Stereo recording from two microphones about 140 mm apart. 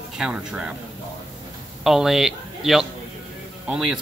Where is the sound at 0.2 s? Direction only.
5° right (ahead or behind).